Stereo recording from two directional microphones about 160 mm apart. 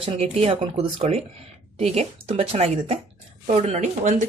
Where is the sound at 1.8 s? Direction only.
40° right (ahead or behind).